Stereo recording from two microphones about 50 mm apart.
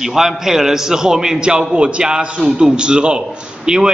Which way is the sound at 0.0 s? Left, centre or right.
Centre.